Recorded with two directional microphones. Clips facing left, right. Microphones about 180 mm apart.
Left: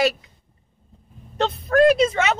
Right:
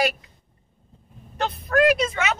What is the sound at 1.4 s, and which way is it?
Speech, 25° left (ahead or behind).